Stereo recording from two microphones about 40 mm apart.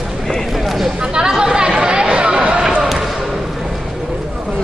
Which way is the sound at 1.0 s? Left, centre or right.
Centre.